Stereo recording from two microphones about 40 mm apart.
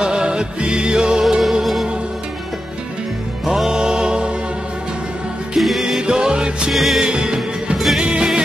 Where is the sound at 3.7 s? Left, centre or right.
Right.